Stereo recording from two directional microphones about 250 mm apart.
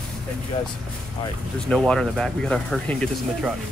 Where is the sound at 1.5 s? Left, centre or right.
Centre.